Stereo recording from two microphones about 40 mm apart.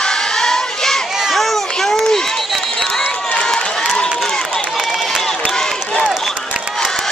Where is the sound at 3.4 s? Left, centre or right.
Centre.